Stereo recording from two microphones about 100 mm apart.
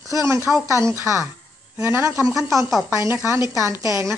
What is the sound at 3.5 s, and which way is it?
Speech, 30° right (ahead or behind).